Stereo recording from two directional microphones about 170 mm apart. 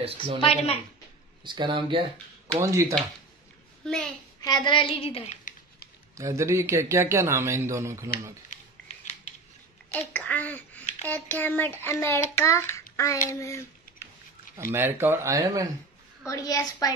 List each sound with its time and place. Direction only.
0.4 s a woman's voice: 35° left (ahead or behind)
1.4 s speech: 30° right (ahead or behind)
2.4 s speech: 20° right (ahead or behind)
3.8 s a child's voice: 5° left (ahead or behind)
4.4 s a woman's voice: 25° left (ahead or behind); by 5.5 s 40° left (ahead or behind)
6.1 s a man's voice: 15° right (ahead or behind)
8.5 s a sound: 45° left (ahead or behind)
9.9 s speech: 10° left (ahead or behind)
12.4 s child singing: 15° left (ahead or behind)
13.3 s speech: 15° left (ahead or behind)
14.7 s a man's voice: 15° right (ahead or behind)
16.3 s a woman's voice: 20° left (ahead or behind)